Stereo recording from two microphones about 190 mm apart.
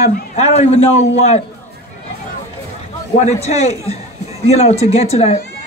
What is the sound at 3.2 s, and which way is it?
A man's voice, 35° left (ahead or behind).